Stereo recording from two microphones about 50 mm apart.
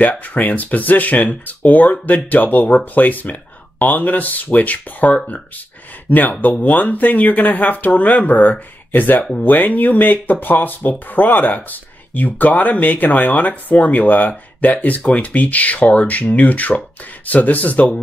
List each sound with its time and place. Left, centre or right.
0.2 s speech: left